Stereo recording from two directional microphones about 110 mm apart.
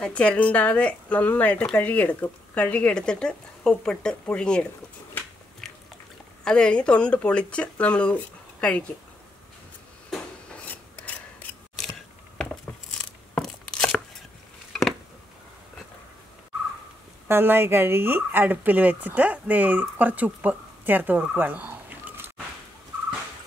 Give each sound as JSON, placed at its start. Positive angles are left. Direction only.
{"t": 0.0, "sound": "speech", "side_deg": 10}
{"t": 5.6, "sound": "a sound", "side_deg": 5}
{"t": 6.4, "sound": "speech", "side_deg": 10}
{"t": 10.1, "sound": "filing", "side_deg": 10}
{"t": 13.3, "sound": "tearing", "side_deg": 5}
{"t": 17.3, "sound": "a woman's voice", "side_deg": -20}